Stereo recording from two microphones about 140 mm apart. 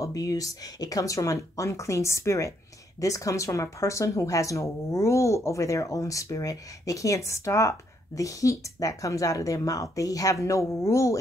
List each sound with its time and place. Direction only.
0.0 s speech: 25° left (ahead or behind)